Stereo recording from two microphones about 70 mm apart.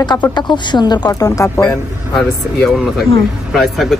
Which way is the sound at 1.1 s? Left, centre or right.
Left.